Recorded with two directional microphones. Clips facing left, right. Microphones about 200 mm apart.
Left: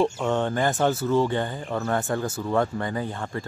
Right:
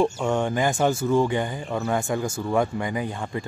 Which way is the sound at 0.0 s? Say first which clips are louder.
Right 1 dB; 10° right (ahead or behind).